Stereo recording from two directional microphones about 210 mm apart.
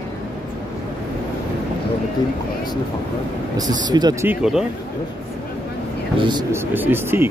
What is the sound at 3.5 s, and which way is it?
Speech, 20° right (ahead or behind).